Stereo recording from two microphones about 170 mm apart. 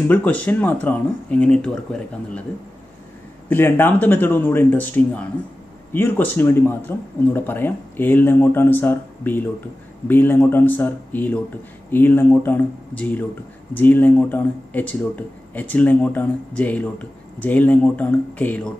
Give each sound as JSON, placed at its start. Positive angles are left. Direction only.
{"t": 0.1, "sound": "speech", "side_deg": 10}
{"t": 3.4, "sound": "speech", "side_deg": 10}